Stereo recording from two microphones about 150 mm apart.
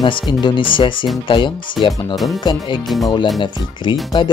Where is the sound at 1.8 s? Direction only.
Centre (ahead or behind).